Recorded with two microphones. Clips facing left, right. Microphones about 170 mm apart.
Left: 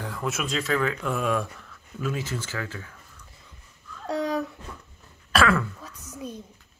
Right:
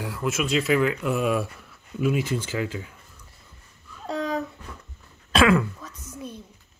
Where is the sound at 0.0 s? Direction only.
5° right (ahead or behind).